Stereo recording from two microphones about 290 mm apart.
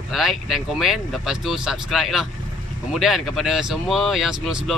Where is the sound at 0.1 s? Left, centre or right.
Centre.